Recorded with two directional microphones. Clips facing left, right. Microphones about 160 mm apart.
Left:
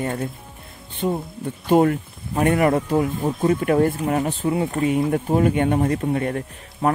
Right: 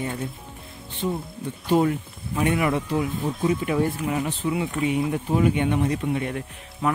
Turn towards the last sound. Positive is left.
turn(degrees=45)  # may be behind; listen again after turning